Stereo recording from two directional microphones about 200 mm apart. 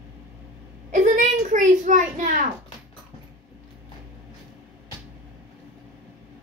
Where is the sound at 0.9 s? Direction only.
40° right (ahead or behind).